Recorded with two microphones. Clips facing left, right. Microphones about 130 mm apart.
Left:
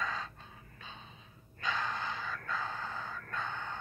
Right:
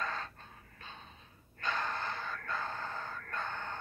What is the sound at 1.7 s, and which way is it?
Gasp, 10° left (ahead or behind).